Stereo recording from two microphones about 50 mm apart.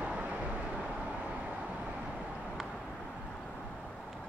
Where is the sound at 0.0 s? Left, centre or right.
Right.